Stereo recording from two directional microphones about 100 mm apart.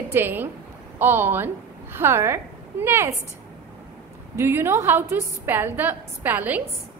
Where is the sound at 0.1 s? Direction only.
20° right (ahead or behind).